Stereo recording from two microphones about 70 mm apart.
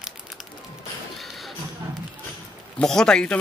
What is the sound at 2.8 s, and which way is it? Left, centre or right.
Speech, centre.